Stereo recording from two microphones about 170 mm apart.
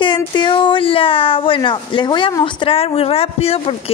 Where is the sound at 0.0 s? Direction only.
30° left (ahead or behind).